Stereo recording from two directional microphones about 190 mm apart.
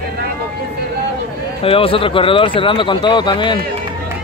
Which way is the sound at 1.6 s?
30° left (ahead or behind).